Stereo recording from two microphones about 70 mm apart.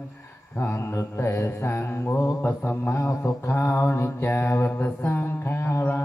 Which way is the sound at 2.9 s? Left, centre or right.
Left.